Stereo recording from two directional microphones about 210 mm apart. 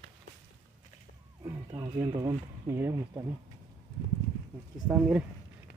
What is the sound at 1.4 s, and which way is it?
Speech, 15° right (ahead or behind).